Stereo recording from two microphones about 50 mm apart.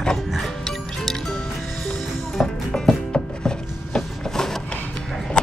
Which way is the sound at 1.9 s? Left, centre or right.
Centre.